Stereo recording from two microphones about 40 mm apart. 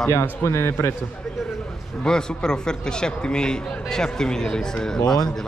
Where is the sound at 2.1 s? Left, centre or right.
Centre.